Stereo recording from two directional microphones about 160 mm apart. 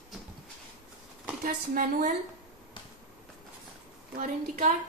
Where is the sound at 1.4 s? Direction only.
60° right (ahead or behind).